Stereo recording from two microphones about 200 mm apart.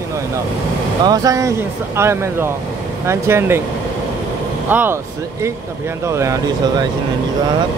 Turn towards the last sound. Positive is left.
turn(degrees=-15)  # may be behind; listen again after turning